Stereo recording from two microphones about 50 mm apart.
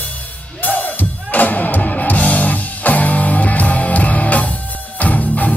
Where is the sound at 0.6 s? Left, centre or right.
Left.